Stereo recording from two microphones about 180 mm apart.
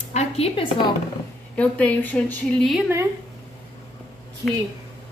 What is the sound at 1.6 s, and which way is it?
A woman's voice, 10° left (ahead or behind).